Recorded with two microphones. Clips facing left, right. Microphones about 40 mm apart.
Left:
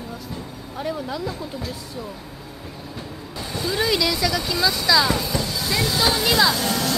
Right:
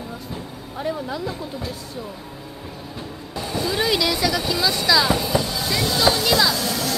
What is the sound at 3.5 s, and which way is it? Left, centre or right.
Speech, centre.